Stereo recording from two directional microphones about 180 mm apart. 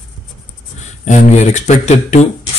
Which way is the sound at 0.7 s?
40° left (ahead or behind).